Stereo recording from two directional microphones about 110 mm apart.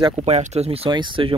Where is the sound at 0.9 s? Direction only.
45° right (ahead or behind).